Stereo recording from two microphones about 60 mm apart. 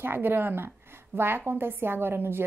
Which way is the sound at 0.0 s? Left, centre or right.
Right.